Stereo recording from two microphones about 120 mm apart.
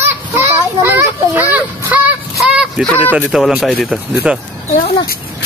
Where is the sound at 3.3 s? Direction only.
Centre (ahead or behind).